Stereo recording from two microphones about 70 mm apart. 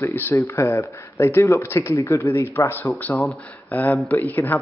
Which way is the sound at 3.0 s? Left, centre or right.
Left.